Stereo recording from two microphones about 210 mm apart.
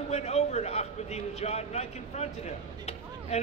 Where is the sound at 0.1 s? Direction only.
30° left (ahead or behind).